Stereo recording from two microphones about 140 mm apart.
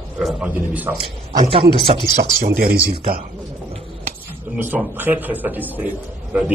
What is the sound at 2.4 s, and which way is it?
Speech, 90° right.